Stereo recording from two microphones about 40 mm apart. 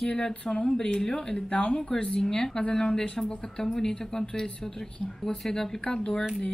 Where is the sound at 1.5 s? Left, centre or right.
Left; by 3.9 s centre.